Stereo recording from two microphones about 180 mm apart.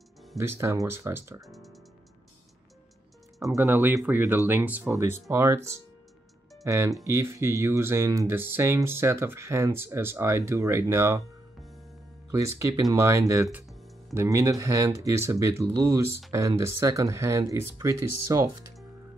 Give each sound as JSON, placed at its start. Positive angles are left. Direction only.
{"t": 0.4, "sound": "speech", "side_deg": -15}
{"t": 1.4, "sound": "music", "side_deg": 0}
{"t": 3.3, "sound": "speech", "side_deg": -15}
{"t": 12.3, "sound": "speech", "side_deg": -20}
{"t": 14.1, "sound": "speech", "side_deg": -15}